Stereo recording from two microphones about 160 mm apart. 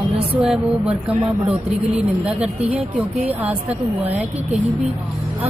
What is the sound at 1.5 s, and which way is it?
A woman's voice, 5° right (ahead or behind).